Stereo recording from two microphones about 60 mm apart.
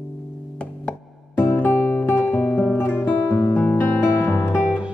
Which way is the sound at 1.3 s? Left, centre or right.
Left.